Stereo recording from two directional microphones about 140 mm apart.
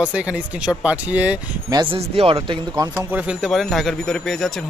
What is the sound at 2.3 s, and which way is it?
Speech, 30° right (ahead or behind).